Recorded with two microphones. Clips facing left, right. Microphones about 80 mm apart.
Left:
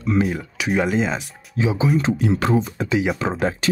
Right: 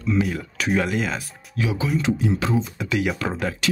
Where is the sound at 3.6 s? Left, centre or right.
Left.